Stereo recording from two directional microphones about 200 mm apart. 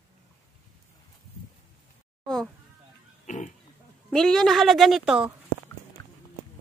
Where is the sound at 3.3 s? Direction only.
40° left (ahead or behind).